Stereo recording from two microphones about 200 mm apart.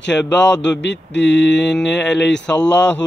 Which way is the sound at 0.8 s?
60° left (ahead or behind).